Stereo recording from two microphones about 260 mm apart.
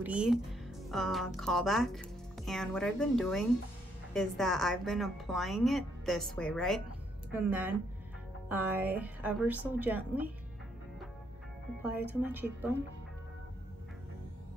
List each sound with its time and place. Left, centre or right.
0.0 s a woman's voice: centre
11.8 s a woman's voice: centre